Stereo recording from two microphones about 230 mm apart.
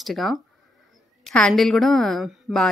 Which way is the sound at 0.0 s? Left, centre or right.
Centre.